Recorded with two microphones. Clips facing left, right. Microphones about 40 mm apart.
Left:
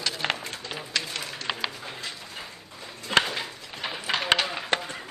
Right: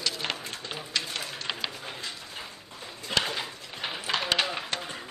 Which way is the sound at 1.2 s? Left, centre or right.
Centre.